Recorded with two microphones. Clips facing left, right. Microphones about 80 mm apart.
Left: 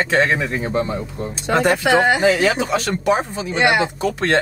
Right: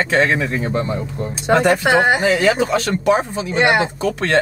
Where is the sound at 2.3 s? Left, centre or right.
Right.